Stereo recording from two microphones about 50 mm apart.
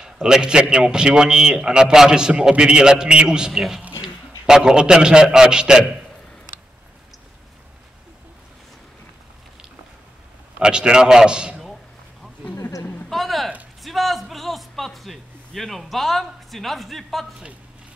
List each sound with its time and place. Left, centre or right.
0.0 s a man's voice: centre
10.6 s a man's voice: centre
13.1 s a sound: centre